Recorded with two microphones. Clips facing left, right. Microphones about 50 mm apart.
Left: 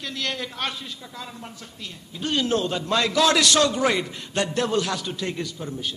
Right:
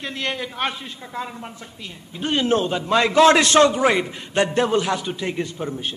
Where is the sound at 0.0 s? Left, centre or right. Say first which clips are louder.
Right 3 dB; right.